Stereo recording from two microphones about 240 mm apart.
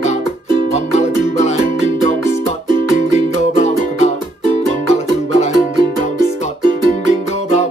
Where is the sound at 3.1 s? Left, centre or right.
Left.